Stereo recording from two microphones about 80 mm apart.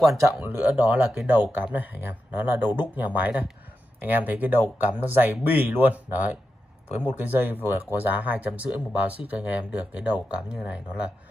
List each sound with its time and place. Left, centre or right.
0.4 s speech: centre